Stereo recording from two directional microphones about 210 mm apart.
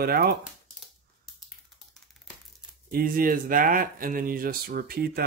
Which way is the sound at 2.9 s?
45° right (ahead or behind).